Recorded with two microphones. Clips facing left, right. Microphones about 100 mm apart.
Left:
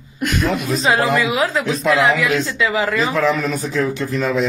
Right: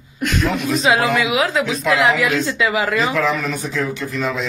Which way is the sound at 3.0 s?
35° left (ahead or behind).